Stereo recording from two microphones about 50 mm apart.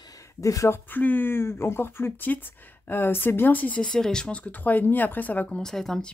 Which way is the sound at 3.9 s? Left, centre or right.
Centre.